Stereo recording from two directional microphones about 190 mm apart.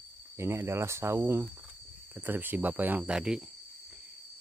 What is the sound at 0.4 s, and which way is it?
Speech, 15° right (ahead or behind).